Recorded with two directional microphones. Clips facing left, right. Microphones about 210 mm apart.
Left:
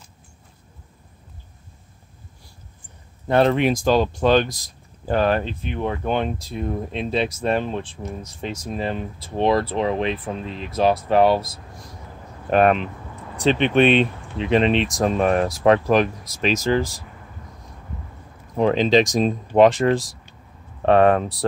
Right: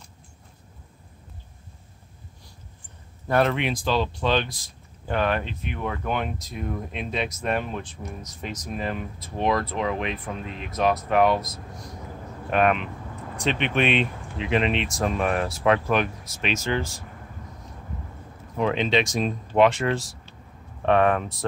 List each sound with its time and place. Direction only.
3.3 s speech: 25° left (ahead or behind)
3.5 s speech: 45° left (ahead or behind)
18.6 s speech: 35° left (ahead or behind)